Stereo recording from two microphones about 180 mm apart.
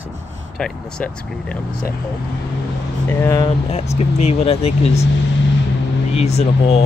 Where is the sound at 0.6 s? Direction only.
5° left (ahead or behind).